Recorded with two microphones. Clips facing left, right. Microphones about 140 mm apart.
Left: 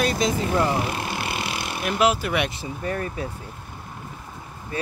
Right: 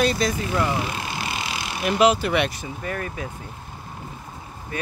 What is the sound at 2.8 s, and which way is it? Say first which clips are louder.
Speech: left 2 dB; 35° left (ahead or behind).